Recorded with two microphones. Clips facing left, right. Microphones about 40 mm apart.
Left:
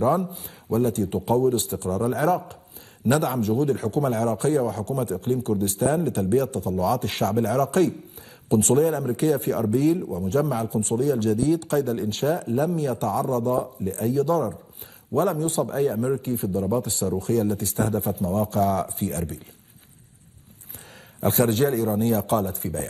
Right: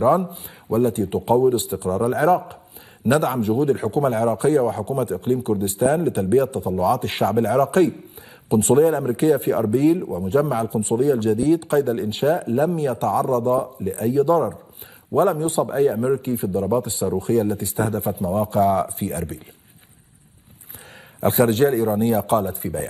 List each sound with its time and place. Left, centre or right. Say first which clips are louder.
0.2 s a man's voice: right 2 dB; centre
2.0 s a man's voice: right 5 dB; centre
21.2 s a man's voice: right 4 dB; centre